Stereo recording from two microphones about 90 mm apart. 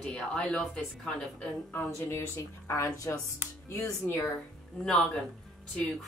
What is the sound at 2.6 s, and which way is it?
Speech, 35° left (ahead or behind).